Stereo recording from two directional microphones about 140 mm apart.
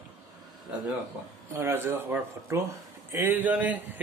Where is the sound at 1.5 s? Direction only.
20° right (ahead or behind).